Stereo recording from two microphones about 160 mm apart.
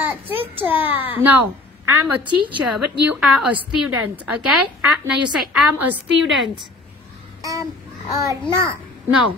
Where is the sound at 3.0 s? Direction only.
5° right (ahead or behind).